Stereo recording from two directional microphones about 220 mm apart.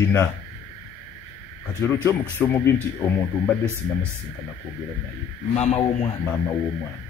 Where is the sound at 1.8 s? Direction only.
10° left (ahead or behind).